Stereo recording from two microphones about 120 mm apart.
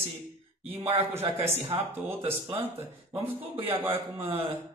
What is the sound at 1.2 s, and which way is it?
Speech, 50° right (ahead or behind).